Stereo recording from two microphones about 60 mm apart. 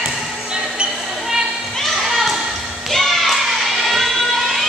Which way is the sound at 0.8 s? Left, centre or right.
Centre.